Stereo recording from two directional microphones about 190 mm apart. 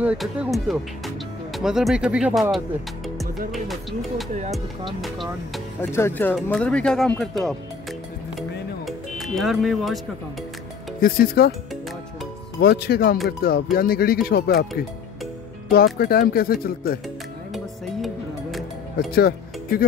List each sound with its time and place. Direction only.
0.0 s speech: 5° right (ahead or behind)
5.8 s speech: 15° left (ahead or behind)
8.4 s music: centre (ahead or behind)
11.0 s speech: 50° left (ahead or behind)
12.5 s speech: 55° left (ahead or behind)
15.7 s speech: 55° left (ahead or behind)
18.0 s music: centre (ahead or behind)
19.1 s music: 55° left (ahead or behind)